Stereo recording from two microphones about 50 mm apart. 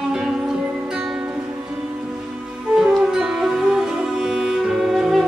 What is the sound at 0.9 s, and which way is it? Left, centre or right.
Music, centre.